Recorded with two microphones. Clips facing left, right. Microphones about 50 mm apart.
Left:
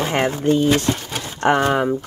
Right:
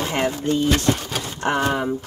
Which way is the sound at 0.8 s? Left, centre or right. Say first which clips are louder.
Right 1 dB; centre.